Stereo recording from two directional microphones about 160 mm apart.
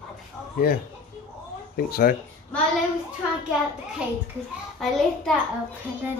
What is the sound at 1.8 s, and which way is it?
Speech, 65° left (ahead or behind).